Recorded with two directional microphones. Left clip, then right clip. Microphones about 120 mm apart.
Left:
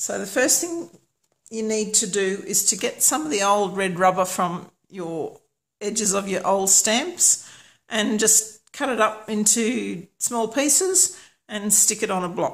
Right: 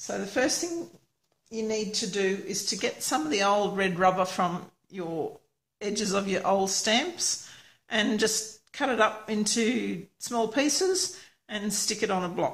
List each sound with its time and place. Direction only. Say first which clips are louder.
0.0 s speech: left 5 dB; 45° left (ahead or behind)
1.5 s a woman's voice: left 6 dB; 55° left (ahead or behind)
3.1 s speech: left 4 dB; 30° left (ahead or behind)